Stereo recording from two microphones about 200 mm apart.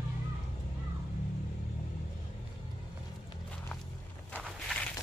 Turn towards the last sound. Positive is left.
turn(degrees=5)  # may be behind; listen again after turning